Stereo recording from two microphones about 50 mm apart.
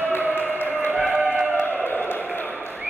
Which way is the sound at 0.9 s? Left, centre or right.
Centre.